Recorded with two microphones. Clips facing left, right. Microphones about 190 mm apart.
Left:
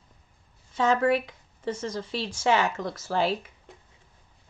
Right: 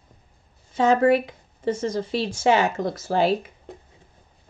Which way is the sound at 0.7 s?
50° right (ahead or behind).